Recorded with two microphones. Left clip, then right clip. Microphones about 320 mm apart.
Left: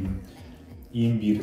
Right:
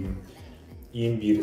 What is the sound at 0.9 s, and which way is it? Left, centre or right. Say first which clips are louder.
Speech: right 1 dB; centre.